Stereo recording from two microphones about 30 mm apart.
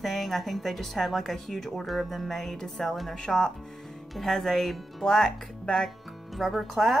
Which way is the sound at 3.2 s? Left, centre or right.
Centre.